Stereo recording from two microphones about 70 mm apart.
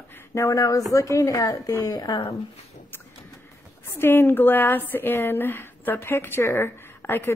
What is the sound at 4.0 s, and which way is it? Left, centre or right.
A woman's voice, left.